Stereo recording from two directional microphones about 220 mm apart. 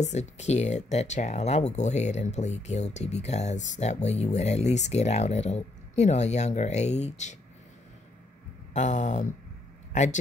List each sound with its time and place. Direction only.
0.0 s speech: 30° left (ahead or behind)
8.7 s speech: 35° left (ahead or behind)